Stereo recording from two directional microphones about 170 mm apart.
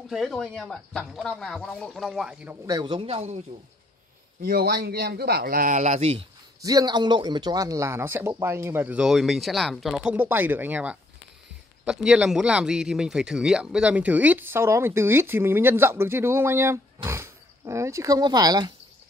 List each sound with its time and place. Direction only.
0.1 s speech: centre (ahead or behind)
2.6 s speech: 25° right (ahead or behind)
4.4 s a man's voice: 60° right (ahead or behind); by 6.2 s 40° right (ahead or behind)
6.6 s speech: 20° right (ahead or behind)